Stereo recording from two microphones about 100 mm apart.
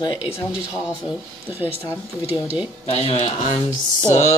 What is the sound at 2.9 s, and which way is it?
Speech, 90° left.